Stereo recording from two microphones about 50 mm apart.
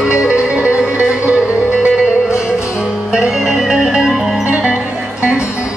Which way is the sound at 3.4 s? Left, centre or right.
Centre.